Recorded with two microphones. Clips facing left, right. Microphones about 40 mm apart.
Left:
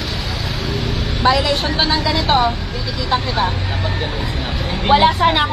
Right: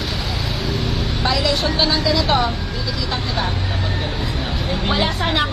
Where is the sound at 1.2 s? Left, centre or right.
Left.